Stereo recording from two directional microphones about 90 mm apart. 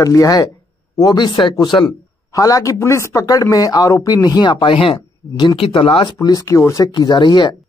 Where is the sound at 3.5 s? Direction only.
45° left (ahead or behind); by 6.1 s 85° left.